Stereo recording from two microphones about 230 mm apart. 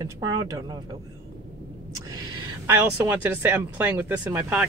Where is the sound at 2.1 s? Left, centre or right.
Centre.